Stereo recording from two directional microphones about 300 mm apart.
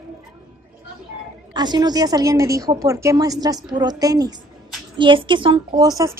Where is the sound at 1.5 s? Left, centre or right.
Centre.